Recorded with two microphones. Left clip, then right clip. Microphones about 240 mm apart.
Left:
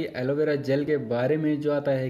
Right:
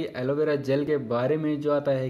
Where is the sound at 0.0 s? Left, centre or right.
Centre.